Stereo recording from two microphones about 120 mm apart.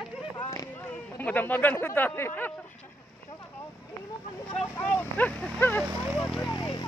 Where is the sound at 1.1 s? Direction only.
15° left (ahead or behind).